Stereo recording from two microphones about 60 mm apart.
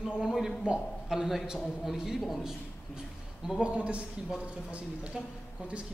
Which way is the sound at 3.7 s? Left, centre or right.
Right.